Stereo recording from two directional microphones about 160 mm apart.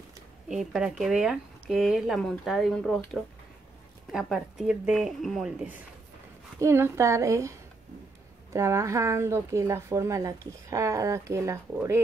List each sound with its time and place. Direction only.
0.5 s speech: 5° right (ahead or behind)
4.1 s speech: centre (ahead or behind)
6.6 s a woman's voice: 15° right (ahead or behind)
8.5 s a woman's voice: 20° right (ahead or behind)